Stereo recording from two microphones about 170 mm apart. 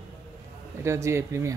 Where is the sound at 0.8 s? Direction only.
15° right (ahead or behind).